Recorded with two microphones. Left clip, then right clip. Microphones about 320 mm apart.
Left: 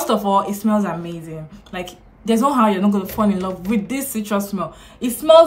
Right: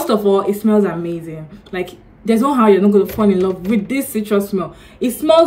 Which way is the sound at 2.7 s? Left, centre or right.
Centre.